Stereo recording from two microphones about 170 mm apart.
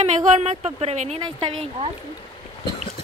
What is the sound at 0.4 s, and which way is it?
Speech, 40° right (ahead or behind).